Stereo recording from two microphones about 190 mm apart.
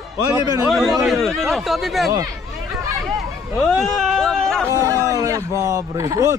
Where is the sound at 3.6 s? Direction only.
Centre (ahead or behind).